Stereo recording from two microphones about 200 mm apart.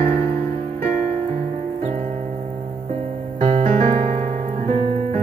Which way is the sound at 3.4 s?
30° right (ahead or behind).